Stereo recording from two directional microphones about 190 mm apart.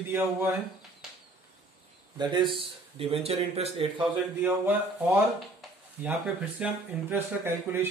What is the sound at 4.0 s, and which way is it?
A man's voice, 10° right (ahead or behind).